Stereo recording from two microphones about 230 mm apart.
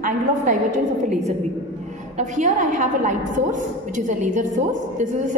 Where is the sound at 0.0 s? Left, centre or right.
Right.